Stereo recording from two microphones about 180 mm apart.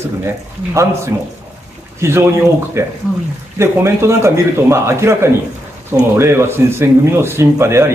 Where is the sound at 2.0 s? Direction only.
15° right (ahead or behind).